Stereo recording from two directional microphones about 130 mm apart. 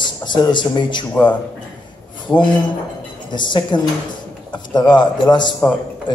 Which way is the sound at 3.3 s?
35° left (ahead or behind).